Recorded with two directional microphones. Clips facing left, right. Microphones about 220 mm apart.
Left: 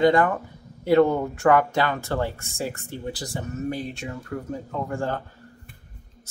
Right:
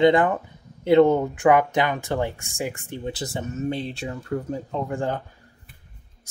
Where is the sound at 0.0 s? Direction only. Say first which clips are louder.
Right 1 dB; 20° right (ahead or behind).